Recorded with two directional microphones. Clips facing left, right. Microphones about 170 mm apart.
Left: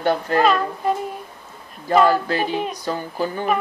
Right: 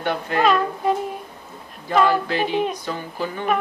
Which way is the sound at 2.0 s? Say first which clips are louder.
Even; 40° left (ahead or behind).